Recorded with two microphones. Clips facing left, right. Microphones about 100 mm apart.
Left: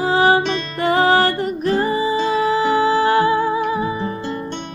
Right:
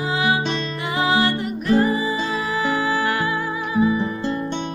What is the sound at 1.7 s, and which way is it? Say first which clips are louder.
Music: even; 30° left (ahead or behind).